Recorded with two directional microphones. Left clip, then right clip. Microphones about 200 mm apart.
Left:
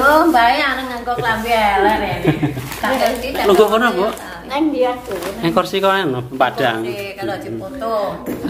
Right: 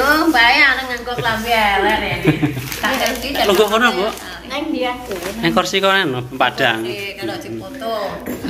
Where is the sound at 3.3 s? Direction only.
5° left (ahead or behind).